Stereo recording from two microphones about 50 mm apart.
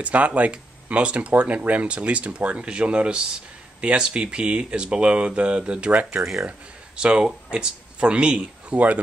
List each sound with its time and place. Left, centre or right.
0.0 s speech: right
7.0 s speech: centre